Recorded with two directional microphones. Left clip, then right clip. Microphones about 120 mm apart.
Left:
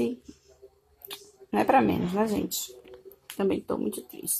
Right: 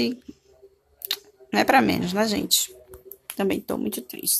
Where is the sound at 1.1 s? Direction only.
10° right (ahead or behind).